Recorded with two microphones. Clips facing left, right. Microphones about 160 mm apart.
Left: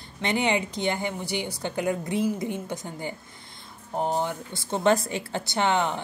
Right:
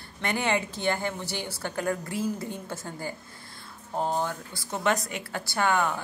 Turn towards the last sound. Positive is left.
turn(degrees=25)  # may be behind; listen again after turning